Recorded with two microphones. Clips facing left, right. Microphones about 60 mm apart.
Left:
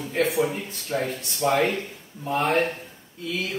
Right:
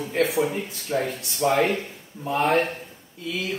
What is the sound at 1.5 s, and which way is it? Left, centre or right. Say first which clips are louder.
Speech: right 1 dB; right.